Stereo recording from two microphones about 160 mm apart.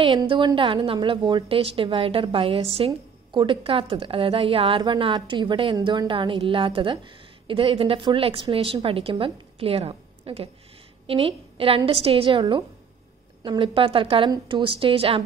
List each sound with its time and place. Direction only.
0.0 s a woman's voice: 30° right (ahead or behind)